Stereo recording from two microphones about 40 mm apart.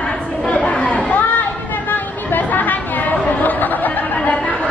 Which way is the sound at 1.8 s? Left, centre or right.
Left.